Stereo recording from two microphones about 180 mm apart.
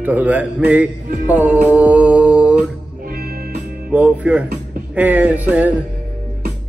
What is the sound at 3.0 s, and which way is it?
Music, 60° right (ahead or behind).